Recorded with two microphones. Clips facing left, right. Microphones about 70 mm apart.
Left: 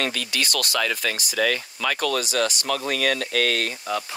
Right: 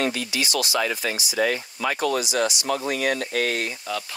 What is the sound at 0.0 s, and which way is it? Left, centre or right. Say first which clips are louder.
Speech: right 1 dB; left.